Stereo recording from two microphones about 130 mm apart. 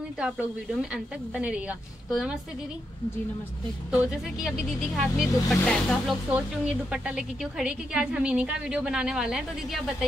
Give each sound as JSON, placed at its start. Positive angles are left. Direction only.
{"t": 0.2, "sound": "a woman's voice", "side_deg": -5}
{"t": 3.9, "sound": "speech", "side_deg": -10}
{"t": 6.3, "sound": "a woman's voice", "side_deg": -10}